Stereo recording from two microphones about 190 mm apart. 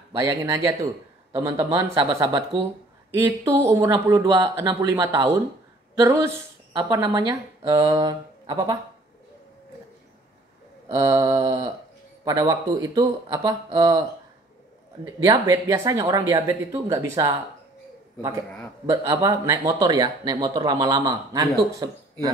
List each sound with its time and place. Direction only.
0.1 s a man's voice: 15° right (ahead or behind)
3.1 s a man's voice: 15° right (ahead or behind)
11.0 s a man's voice: 20° right (ahead or behind)
15.2 s speech: 20° right (ahead or behind)
18.9 s a man's voice: 15° right (ahead or behind)